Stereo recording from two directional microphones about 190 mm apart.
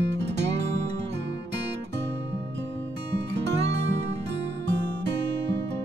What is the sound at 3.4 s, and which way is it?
Music, 65° right (ahead or behind).